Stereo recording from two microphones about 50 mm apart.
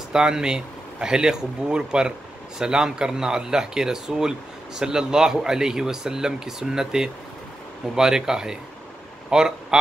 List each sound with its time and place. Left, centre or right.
0.1 s a man's voice: centre